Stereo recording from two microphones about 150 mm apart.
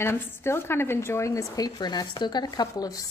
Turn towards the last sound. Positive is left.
turn(degrees=25)  # may be behind; listen again after turning